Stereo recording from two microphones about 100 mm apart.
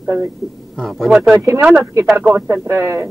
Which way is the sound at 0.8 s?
Centre (ahead or behind).